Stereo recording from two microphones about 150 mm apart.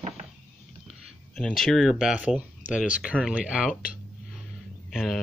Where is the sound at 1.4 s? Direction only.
5° left (ahead or behind).